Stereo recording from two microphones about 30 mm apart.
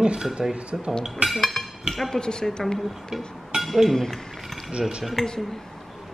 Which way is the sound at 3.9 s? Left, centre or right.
Centre.